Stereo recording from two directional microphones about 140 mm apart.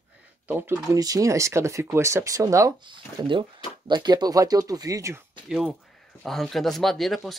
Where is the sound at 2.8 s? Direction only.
35° right (ahead or behind).